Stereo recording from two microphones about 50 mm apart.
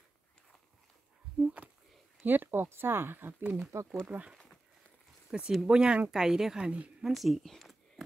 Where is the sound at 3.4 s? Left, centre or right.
Centre.